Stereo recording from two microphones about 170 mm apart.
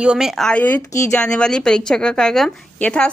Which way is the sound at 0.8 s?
20° left (ahead or behind).